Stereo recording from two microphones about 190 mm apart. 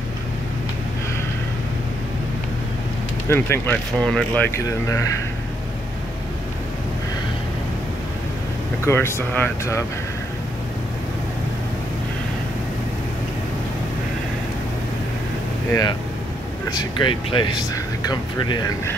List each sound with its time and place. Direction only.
3.3 s speech: 15° left (ahead or behind)
4.6 s speech: 15° left (ahead or behind)
8.8 s speech: 10° left (ahead or behind)
15.7 s speech: 20° left (ahead or behind)